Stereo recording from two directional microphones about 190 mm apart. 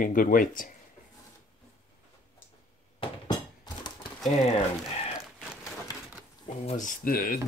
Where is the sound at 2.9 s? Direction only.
25° left (ahead or behind).